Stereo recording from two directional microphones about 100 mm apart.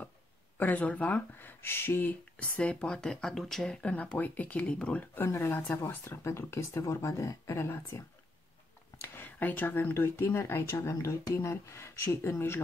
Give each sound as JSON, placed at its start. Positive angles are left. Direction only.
{"t": 0.6, "sound": "speech", "side_deg": 15}
{"t": 9.1, "sound": "speech", "side_deg": 20}